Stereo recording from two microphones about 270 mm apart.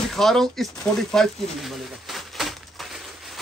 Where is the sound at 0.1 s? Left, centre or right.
Centre.